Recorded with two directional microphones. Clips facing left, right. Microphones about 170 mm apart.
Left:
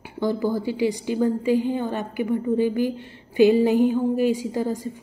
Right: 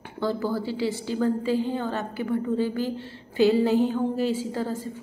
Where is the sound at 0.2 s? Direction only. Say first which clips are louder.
Left 3 dB; 15° left (ahead or behind).